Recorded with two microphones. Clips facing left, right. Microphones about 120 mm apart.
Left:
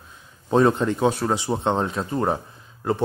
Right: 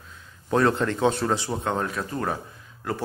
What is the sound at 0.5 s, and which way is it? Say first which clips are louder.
A man's voice: left 3 dB; 20° left (ahead or behind).